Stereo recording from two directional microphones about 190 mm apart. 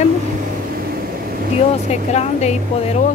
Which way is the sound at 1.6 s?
35° left (ahead or behind).